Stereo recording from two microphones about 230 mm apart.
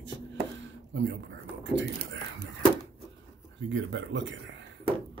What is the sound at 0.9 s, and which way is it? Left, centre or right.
Speech, right.